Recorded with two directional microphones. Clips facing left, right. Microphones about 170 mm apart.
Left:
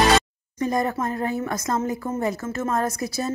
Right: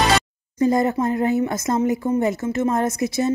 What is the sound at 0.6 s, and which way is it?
A woman's voice, 25° right (ahead or behind).